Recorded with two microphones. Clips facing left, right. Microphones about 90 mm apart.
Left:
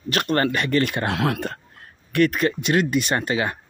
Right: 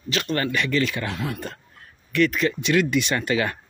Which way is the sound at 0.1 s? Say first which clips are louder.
Left 3 dB; 50° left (ahead or behind).